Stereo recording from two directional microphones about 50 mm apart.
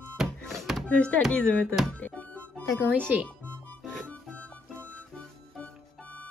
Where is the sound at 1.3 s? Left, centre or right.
Left.